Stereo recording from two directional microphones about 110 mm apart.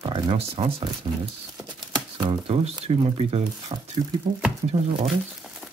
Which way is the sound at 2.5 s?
70° right (ahead or behind).